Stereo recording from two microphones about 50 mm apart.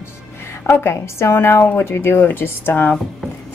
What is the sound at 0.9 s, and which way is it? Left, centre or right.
A woman's voice, left.